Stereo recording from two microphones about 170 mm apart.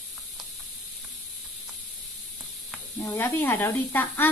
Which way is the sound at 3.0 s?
15° left (ahead or behind).